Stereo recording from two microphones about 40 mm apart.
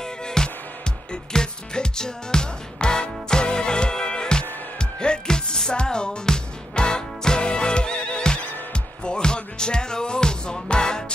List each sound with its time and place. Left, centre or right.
0.0 s music: centre